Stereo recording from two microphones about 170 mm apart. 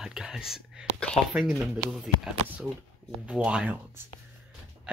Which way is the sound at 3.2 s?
5° right (ahead or behind).